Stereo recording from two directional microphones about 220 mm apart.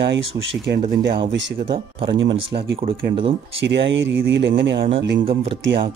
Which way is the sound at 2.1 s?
55° right (ahead or behind).